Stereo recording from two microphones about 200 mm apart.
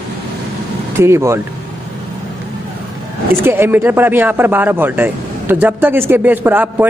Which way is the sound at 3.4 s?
10° right (ahead or behind).